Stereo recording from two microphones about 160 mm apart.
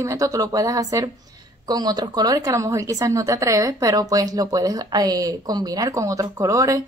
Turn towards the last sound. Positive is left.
turn(degrees=-20)  # may be behind; listen again after turning